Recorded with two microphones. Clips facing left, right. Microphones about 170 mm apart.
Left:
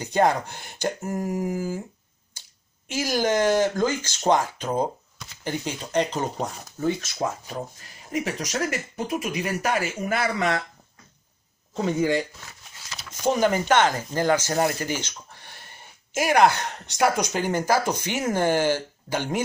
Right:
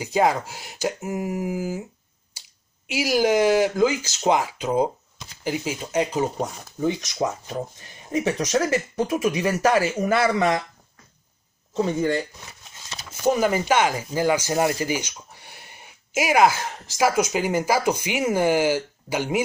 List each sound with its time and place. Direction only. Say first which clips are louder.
0.0 s speech: even; 5° right (ahead or behind)
2.9 s speech: right 3 dB; 10° right (ahead or behind); by 10.5 s 30° right (ahead or behind)
11.9 s speech: left 2 dB; 5° left (ahead or behind)
13.2 s speech: right 1 dB; 5° right (ahead or behind)